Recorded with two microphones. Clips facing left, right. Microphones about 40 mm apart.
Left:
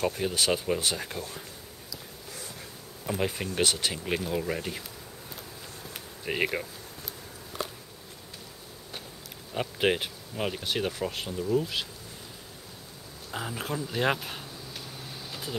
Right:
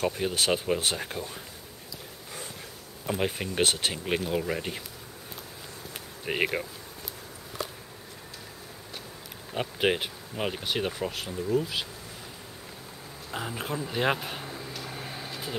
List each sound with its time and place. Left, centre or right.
0.1 s speech: centre
3.1 s speech: centre
6.2 s speech: centre
9.5 s speech: centre
13.3 s speech: centre
14.4 s a sound: right